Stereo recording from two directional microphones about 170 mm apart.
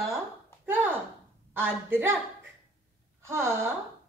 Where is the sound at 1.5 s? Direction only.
10° right (ahead or behind).